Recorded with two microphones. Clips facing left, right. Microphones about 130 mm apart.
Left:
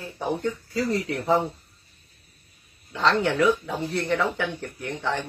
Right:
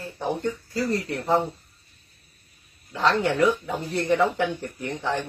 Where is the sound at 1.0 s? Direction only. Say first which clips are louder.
Left 1 dB; centre (ahead or behind).